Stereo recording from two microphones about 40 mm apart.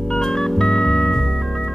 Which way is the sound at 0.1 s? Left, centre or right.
Centre.